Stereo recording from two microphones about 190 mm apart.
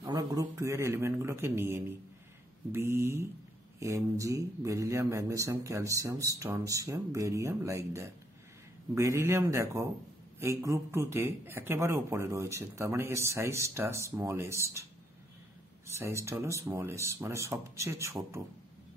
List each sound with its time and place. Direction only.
0.0 s speech: 20° right (ahead or behind)
16.0 s speech: 15° right (ahead or behind)